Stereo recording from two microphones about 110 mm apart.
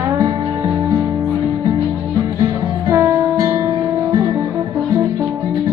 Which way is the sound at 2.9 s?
30° right (ahead or behind).